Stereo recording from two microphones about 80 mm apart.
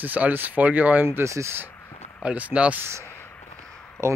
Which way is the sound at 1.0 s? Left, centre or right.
Right.